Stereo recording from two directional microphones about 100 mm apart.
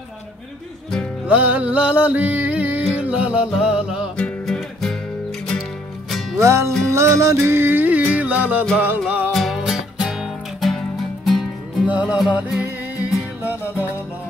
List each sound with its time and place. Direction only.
1.2 s music: 15° right (ahead or behind)
4.2 s music: 5° left (ahead or behind)
6.0 s music: centre (ahead or behind)
6.4 s music: 30° right (ahead or behind)
9.3 s music: centre (ahead or behind)
11.8 s music: 15° right (ahead or behind)